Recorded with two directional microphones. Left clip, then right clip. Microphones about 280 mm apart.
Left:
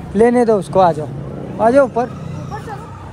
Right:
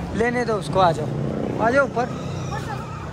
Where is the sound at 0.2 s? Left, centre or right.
Centre.